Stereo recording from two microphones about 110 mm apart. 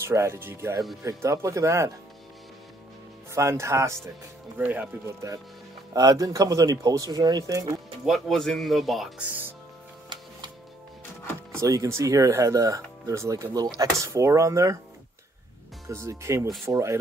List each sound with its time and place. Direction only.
0.0 s speech: 25° right (ahead or behind)
3.3 s speech: 25° right (ahead or behind)
4.6 s speech: 15° right (ahead or behind)
5.0 s speech: 30° right (ahead or behind)
8.0 s speech: centre (ahead or behind)
9.2 s speech: 15° right (ahead or behind)
11.6 s speech: 30° right (ahead or behind)
15.9 s speech: 25° right (ahead or behind)